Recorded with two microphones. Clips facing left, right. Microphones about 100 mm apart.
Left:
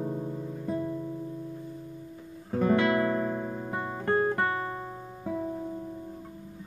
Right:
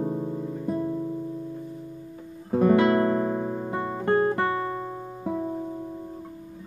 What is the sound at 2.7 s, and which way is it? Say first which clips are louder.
Music: right 2 dB; 30° right (ahead or behind).